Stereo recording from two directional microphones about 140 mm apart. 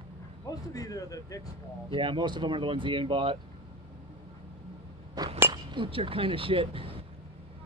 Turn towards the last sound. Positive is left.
turn(degrees=-40)  # may be behind; listen again after turning